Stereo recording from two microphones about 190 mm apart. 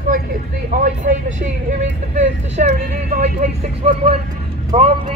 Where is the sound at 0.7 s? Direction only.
40° right (ahead or behind).